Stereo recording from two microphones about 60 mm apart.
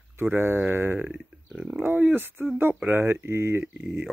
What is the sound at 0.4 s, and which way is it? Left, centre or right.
Speech, right.